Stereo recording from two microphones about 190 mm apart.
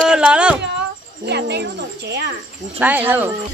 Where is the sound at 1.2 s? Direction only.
60° right (ahead or behind).